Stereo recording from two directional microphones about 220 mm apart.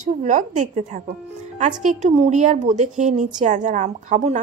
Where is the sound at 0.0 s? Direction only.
35° right (ahead or behind).